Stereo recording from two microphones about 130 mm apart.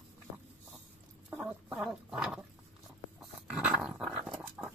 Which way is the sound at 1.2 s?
5° right (ahead or behind).